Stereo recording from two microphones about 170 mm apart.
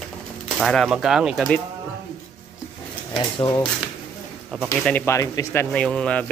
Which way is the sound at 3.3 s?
25° left (ahead or behind).